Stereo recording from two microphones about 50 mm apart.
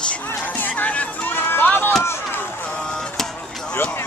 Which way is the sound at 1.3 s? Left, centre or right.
Left.